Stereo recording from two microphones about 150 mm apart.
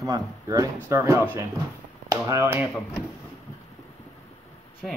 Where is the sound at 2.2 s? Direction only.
20° right (ahead or behind).